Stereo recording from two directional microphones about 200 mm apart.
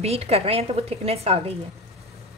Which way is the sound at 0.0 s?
30° right (ahead or behind).